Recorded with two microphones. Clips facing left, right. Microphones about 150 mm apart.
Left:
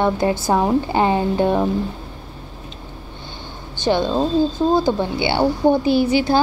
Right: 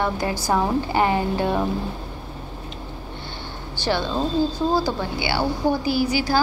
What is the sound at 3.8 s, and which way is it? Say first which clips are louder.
A woman's voice: left 5 dB; 20° left (ahead or behind).